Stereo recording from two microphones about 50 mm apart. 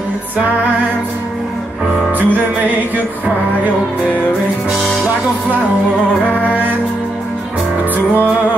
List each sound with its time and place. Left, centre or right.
2.1 s music: right